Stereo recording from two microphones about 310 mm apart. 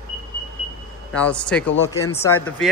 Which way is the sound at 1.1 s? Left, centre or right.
Centre.